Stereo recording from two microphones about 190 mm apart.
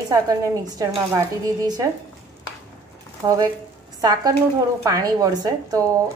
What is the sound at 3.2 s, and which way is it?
A woman's voice, 20° right (ahead or behind).